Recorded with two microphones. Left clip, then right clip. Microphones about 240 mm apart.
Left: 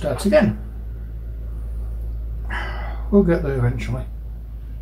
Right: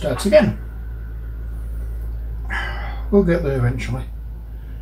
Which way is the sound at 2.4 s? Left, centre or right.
Centre.